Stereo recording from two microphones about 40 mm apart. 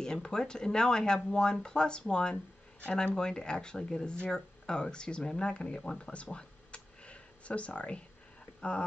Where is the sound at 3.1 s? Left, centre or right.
Centre.